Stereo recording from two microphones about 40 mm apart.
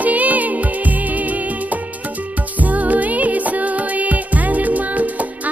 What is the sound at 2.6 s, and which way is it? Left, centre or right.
Music, right.